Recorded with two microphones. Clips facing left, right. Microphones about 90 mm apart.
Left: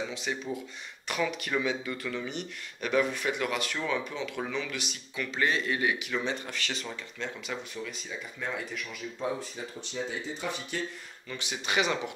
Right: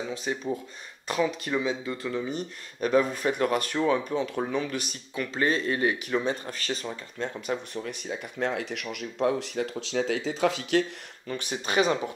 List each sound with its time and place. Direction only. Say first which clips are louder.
0.1 s speech: right 4 dB; 40° right (ahead or behind); by 10.9 s 85° right
11.2 s speech: right 4 dB; 45° right (ahead or behind)